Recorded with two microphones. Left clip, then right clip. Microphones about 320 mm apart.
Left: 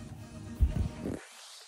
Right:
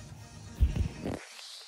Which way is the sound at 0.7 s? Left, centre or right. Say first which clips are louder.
Right 1 dB; centre.